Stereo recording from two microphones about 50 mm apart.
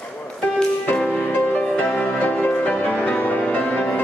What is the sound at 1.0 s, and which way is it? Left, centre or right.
Music, left.